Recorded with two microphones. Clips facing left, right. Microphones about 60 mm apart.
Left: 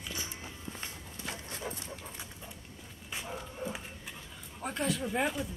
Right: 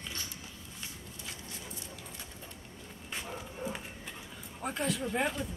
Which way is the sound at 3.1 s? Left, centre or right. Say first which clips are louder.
Left 1 dB; centre.